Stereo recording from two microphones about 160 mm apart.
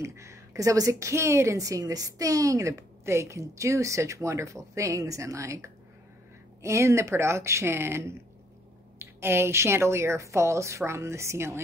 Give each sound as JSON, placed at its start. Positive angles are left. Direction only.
{"t": 0.0, "sound": "a woman's voice", "side_deg": -15}